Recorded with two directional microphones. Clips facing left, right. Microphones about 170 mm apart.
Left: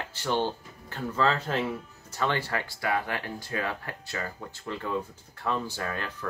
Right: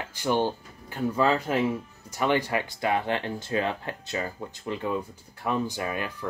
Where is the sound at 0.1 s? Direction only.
15° right (ahead or behind).